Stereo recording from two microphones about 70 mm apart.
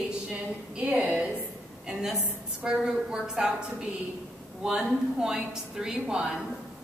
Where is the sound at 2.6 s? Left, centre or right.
Centre.